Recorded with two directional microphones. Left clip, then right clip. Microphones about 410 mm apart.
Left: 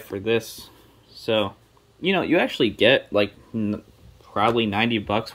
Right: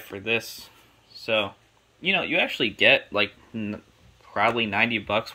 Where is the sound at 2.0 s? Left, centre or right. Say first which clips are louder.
Left 2 dB; centre.